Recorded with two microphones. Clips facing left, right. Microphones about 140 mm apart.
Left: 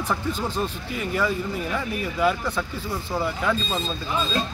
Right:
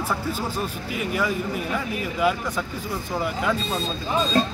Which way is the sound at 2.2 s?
10° right (ahead or behind).